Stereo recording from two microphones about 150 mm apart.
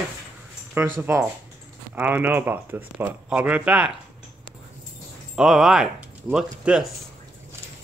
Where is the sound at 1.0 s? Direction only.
15° right (ahead or behind).